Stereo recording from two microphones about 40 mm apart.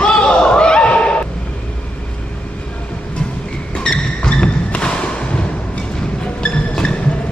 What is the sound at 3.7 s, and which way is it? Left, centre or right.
Thump, left.